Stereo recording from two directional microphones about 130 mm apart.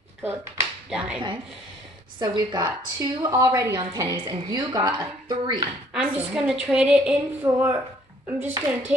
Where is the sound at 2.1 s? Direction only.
35° right (ahead or behind).